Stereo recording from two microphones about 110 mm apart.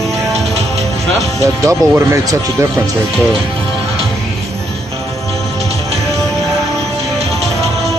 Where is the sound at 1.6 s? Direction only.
30° right (ahead or behind).